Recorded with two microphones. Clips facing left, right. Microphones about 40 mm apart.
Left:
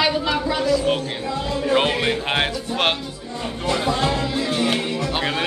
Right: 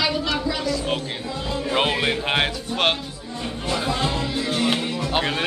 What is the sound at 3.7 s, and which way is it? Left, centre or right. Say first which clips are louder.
Speech: left 3 dB; left.